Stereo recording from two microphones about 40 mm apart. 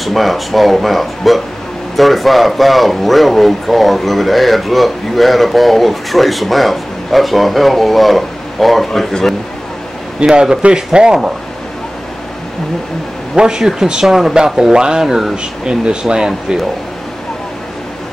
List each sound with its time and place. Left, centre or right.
0.0 s speech: centre
10.2 s speech: centre
13.4 s speech: centre